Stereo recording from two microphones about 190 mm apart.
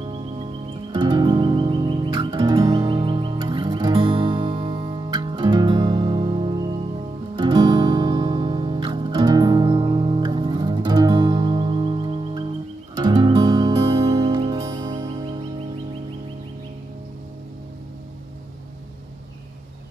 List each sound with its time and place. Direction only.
0.9 s music: 25° right (ahead or behind)